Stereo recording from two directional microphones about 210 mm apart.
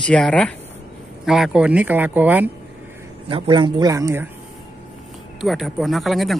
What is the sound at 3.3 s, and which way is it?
Speech, 20° right (ahead or behind).